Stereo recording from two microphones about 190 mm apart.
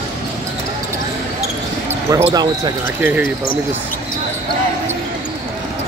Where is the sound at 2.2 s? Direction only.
20° right (ahead or behind).